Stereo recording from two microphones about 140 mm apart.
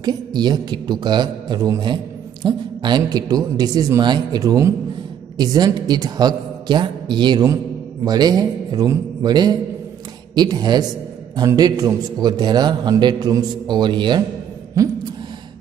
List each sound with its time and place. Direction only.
0.0 s a woman's voice: 30° right (ahead or behind)
14.8 s a man's voice: 25° right (ahead or behind)